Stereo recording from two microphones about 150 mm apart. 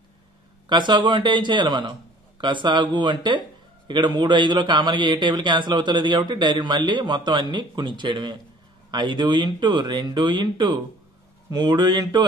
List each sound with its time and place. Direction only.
0.7 s a man's voice: 30° right (ahead or behind)